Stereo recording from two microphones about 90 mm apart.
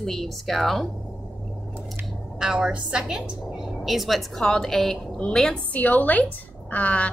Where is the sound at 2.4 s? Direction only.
10° right (ahead or behind); by 7.0 s 15° left (ahead or behind).